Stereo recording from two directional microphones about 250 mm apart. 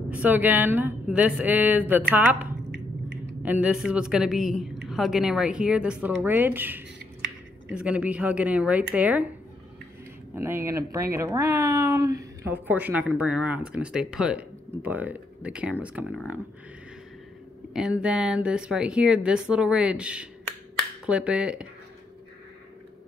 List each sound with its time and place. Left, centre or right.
0.1 s speech: centre
3.4 s speech: centre
10.3 s speech: centre
17.7 s speech: centre